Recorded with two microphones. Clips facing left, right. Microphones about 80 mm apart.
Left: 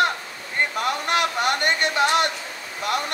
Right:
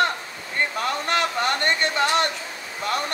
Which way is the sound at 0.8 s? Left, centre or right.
Centre.